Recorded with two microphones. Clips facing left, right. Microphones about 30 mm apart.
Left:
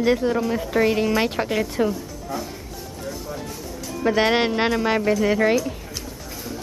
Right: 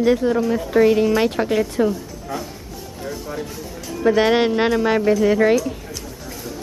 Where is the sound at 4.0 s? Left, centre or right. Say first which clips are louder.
Right 3 dB; centre.